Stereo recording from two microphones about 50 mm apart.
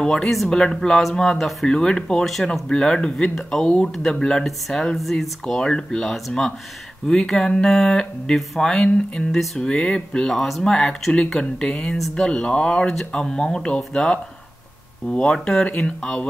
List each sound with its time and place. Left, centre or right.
0.0 s speech: centre
4.5 s speech: centre
5.6 s speech: centre
8.8 s speech: centre